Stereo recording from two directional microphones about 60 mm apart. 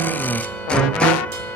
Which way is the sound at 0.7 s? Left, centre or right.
Centre.